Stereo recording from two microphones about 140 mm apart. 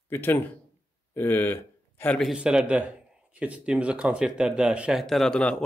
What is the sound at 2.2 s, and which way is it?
A man's voice, 5° right (ahead or behind).